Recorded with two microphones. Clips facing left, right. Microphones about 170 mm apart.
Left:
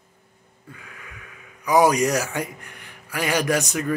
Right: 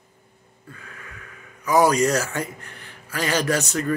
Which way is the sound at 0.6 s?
15° left (ahead or behind).